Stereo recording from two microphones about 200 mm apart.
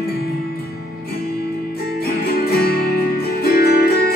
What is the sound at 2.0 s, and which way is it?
Music, 50° left (ahead or behind).